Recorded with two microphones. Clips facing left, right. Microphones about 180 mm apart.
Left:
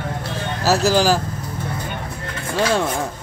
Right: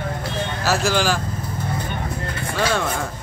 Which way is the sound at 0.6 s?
35° left (ahead or behind).